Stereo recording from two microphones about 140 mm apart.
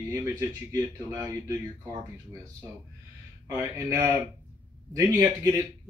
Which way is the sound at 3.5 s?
15° right (ahead or behind).